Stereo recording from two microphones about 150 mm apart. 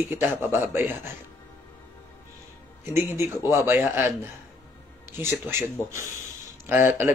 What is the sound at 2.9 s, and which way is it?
Speech, 15° right (ahead or behind).